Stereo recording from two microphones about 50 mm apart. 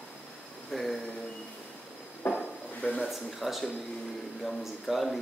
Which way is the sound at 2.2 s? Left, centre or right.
Left.